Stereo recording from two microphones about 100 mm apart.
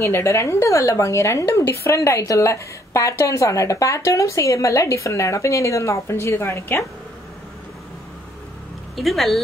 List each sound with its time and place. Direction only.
0.0 s speech: 30° left (ahead or behind)
8.9 s speech: centre (ahead or behind)